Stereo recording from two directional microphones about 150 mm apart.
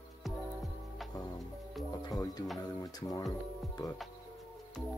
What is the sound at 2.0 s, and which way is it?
Speech, 25° left (ahead or behind).